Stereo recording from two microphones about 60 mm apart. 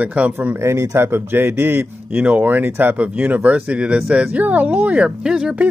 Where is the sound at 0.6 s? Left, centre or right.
Right.